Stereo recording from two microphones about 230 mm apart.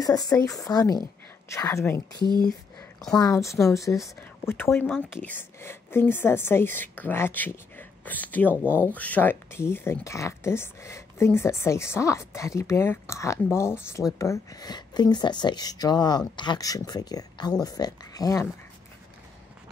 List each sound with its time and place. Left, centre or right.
0.0 s speech: centre